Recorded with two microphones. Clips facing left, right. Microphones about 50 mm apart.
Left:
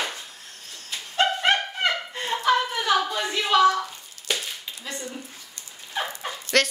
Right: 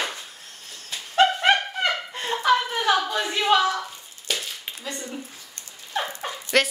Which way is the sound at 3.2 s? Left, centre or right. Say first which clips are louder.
Left 2 dB; centre.